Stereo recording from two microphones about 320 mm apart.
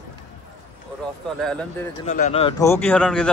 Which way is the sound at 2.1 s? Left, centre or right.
Left.